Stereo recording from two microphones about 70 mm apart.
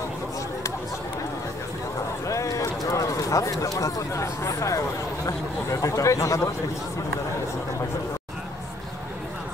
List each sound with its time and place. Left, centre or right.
2.2 s speech: left